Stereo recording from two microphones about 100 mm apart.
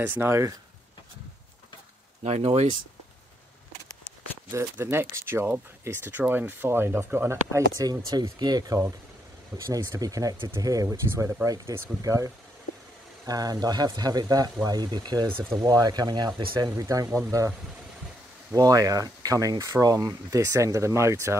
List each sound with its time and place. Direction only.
0.0 s speech: 20° right (ahead or behind)
2.2 s speech: 90° right
4.5 s speech: 25° right (ahead or behind)
13.3 s speech: 40° right (ahead or behind)
18.5 s speech: 35° right (ahead or behind)